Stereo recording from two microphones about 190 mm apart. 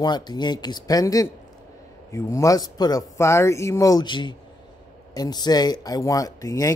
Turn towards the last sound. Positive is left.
turn(degrees=15)  # may be behind; listen again after turning